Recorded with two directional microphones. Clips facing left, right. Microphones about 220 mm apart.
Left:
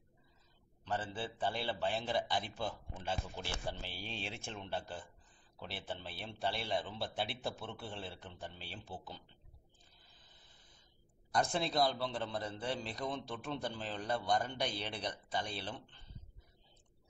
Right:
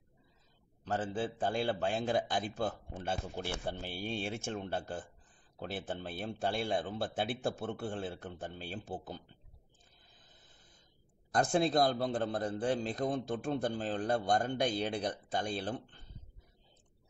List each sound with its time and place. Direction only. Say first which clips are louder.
0.9 s a man's voice: right 5 dB; 45° right (ahead or behind)
11.3 s a man's voice: right 5 dB; 50° right (ahead or behind)